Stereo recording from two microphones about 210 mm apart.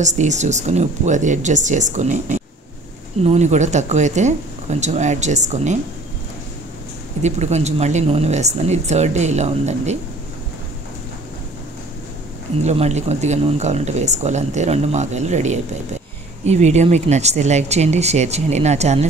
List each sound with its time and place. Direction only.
0.0 s speech: 35° right (ahead or behind)
7.2 s speech: 30° right (ahead or behind)
12.6 s speech: 30° right (ahead or behind)